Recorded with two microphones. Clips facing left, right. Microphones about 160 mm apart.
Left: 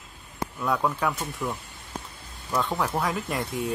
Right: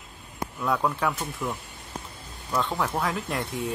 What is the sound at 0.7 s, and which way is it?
Speech, centre (ahead or behind).